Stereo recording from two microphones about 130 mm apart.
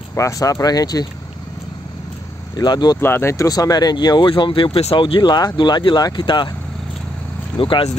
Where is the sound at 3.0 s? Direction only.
20° left (ahead or behind); by 6.5 s 35° left (ahead or behind).